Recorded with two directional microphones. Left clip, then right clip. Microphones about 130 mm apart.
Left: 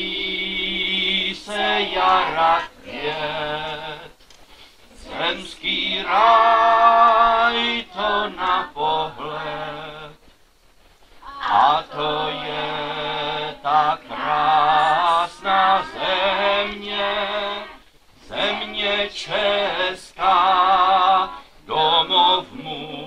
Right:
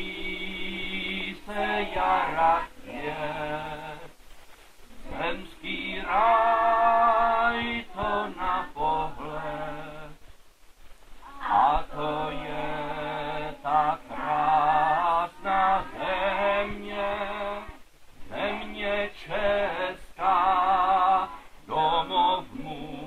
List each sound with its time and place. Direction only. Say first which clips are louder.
1.5 s music: left 6 dB; 35° left (ahead or behind)
5.1 s music: left 7 dB; 40° left (ahead or behind)
11.3 s mantra: left 6 dB; 35° left (ahead or behind)
18.3 s male singing: left 8 dB; 35° left (ahead or behind)
21.6 s mantra: left 7 dB; 40° left (ahead or behind)